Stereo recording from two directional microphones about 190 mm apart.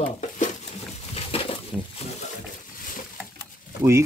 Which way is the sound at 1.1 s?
30° left (ahead or behind).